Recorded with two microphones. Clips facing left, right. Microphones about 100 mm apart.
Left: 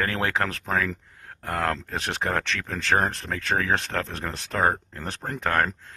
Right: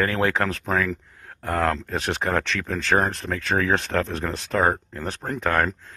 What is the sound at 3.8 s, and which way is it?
Speech, 30° right (ahead or behind).